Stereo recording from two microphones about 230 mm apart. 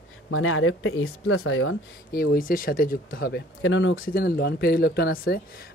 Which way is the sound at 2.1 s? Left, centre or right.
Left.